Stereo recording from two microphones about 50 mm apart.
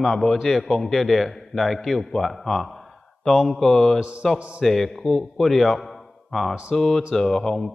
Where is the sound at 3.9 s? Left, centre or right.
Right.